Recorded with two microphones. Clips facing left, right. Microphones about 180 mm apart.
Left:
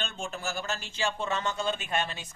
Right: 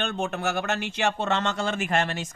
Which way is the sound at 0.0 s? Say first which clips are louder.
Right 8 dB; 65° right (ahead or behind).